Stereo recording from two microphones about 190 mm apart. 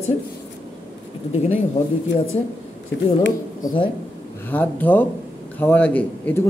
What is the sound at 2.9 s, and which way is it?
Speech, 75° left (ahead or behind).